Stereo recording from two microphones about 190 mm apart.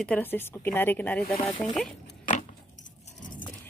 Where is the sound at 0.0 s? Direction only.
10° left (ahead or behind).